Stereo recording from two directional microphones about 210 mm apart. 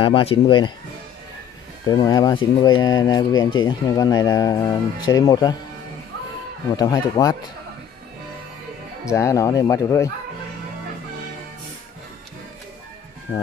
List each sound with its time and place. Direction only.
0.0 s speech: 25° left (ahead or behind)
1.9 s speech: 20° left (ahead or behind)
6.8 s speech: 15° left (ahead or behind)
9.1 s speech: 15° left (ahead or behind)